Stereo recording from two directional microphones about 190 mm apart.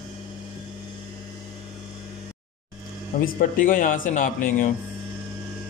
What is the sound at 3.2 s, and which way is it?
Speech, 45° left (ahead or behind).